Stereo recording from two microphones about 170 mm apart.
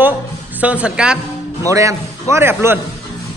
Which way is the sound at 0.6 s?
10° right (ahead or behind).